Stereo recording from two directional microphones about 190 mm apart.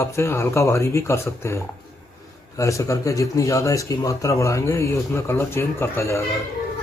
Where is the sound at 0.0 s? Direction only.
15° left (ahead or behind).